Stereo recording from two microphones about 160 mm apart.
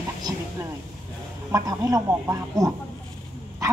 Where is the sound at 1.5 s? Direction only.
20° right (ahead or behind).